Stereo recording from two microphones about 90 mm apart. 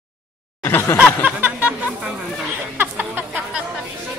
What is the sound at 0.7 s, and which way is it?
Chuckle, 25° left (ahead or behind).